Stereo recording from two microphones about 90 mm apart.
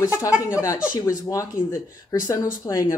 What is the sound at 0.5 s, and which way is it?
Speech, 35° left (ahead or behind).